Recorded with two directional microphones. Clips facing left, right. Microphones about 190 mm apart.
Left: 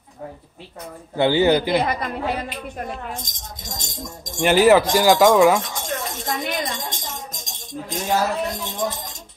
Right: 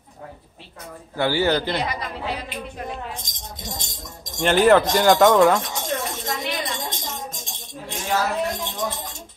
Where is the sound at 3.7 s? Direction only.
45° left (ahead or behind).